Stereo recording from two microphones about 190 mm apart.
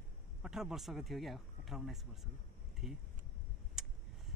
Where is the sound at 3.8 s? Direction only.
5° right (ahead or behind).